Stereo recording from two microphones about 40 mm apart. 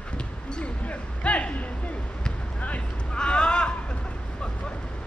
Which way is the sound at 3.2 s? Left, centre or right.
Left.